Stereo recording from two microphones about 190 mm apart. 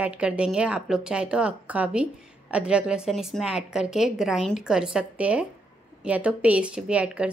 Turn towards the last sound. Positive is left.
turn(degrees=-5)  # may be behind; listen again after turning